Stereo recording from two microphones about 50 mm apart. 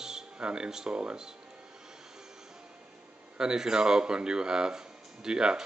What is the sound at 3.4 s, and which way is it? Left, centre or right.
Speech, centre.